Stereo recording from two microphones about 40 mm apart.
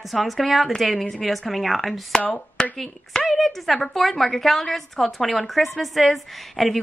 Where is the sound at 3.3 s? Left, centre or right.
Centre.